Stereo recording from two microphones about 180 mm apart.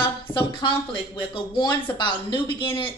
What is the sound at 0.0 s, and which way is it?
Speech, 30° left (ahead or behind).